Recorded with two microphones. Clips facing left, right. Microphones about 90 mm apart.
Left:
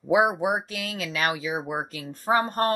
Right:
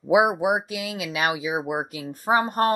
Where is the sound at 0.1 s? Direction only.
10° right (ahead or behind).